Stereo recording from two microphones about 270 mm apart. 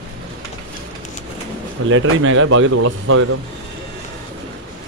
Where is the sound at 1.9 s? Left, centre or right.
Right.